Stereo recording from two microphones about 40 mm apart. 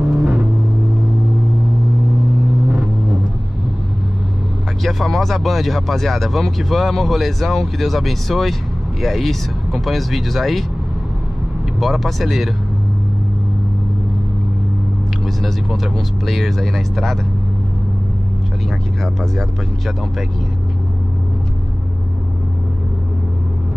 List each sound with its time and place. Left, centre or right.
0.2 s vehicle: centre
4.8 s speech: centre
11.8 s speech: centre
15.2 s speech: centre